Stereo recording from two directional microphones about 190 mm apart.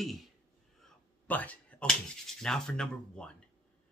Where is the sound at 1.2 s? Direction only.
10° left (ahead or behind).